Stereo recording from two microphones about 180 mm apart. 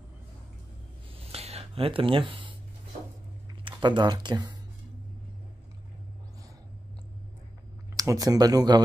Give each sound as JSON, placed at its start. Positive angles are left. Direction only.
{"t": 1.3, "sound": "a sound", "side_deg": -35}
{"t": 3.6, "sound": "speech", "side_deg": -25}
{"t": 7.9, "sound": "speech", "side_deg": -20}